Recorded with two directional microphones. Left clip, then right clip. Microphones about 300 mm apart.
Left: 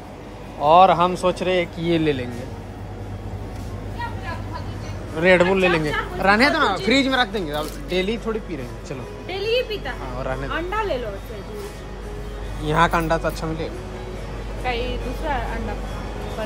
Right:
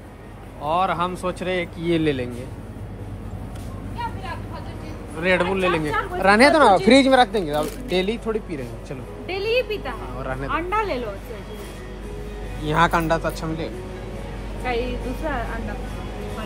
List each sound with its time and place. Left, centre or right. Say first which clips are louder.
0.6 s speech: left 8 dB; centre
5.2 s speech: left 4 dB; centre
9.3 s music: even; centre
10.1 s speech: left 3 dB; centre
12.6 s speech: even; centre
14.7 s a woman's voice: right 1 dB; centre